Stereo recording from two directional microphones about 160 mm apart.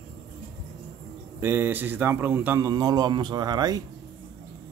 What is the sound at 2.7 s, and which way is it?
Speech, 25° right (ahead or behind).